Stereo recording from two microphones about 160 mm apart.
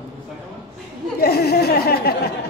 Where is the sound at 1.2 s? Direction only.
85° left.